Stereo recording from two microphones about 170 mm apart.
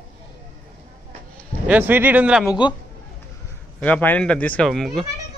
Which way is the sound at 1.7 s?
10° right (ahead or behind).